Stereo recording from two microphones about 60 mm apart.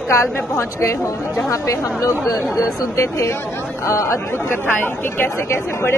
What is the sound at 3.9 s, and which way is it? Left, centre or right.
Speech, left.